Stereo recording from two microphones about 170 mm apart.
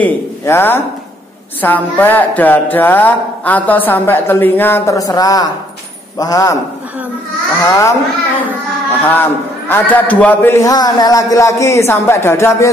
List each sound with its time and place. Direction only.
0.0 s a man's voice: 10° left (ahead or behind)
7.6 s speech: 15° left (ahead or behind)
9.0 s speech: 10° left (ahead or behind)